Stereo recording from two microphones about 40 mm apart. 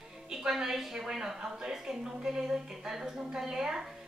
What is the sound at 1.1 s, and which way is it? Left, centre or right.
Speech, centre.